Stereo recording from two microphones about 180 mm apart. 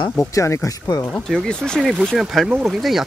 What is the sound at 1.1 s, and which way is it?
Speech, 5° left (ahead or behind).